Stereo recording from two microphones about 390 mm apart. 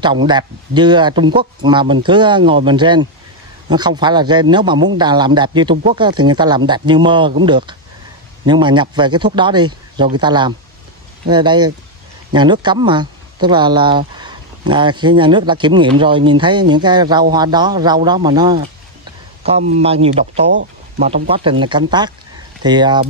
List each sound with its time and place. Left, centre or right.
0.0 s speech: centre
20.4 s speech: right
21.3 s speech: centre